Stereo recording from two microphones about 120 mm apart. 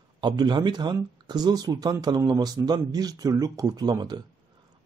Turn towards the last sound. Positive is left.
turn(degrees=-35)  # may be behind; listen again after turning